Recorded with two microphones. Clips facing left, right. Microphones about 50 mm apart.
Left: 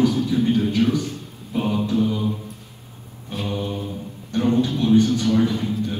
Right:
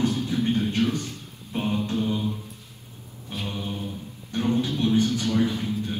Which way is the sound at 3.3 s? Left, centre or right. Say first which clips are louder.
Left 5 dB; left.